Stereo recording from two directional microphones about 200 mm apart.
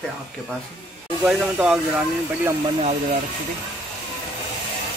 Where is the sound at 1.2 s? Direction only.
5° right (ahead or behind).